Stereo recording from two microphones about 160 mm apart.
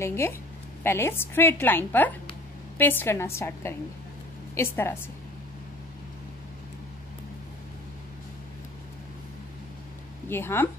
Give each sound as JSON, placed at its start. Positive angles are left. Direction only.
{"t": 0.0, "sound": "a woman's voice", "side_deg": 15}
{"t": 10.3, "sound": "a woman's voice", "side_deg": 15}